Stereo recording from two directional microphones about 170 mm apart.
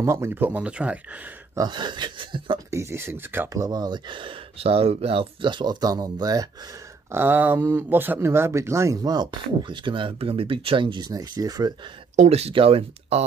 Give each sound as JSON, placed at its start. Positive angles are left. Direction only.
{"t": 0.0, "sound": "speech", "side_deg": -15}
{"t": 1.5, "sound": "speech", "side_deg": -25}
{"t": 2.7, "sound": "speech", "side_deg": -15}
{"t": 12.2, "sound": "speech", "side_deg": -40}